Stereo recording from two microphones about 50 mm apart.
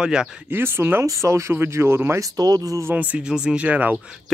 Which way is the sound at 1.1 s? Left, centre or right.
Right.